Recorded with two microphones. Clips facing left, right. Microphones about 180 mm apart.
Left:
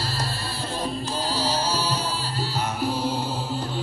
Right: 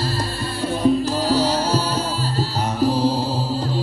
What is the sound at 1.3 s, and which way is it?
Music, 65° right (ahead or behind).